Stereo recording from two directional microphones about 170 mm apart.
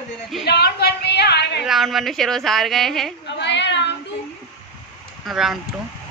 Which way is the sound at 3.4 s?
90° left.